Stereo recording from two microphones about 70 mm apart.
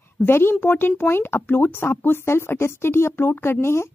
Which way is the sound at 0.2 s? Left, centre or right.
Left.